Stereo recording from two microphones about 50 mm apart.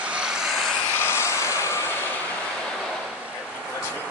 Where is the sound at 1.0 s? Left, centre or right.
Left.